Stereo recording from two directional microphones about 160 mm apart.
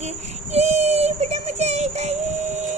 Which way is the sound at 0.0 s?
45° right (ahead or behind).